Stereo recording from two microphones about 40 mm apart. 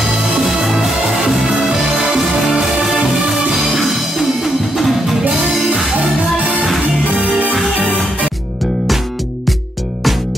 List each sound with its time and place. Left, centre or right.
0.4 s music: centre
7.2 s music: right